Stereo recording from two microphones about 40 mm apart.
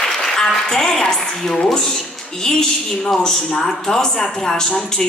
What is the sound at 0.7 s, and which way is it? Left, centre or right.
Speech, centre.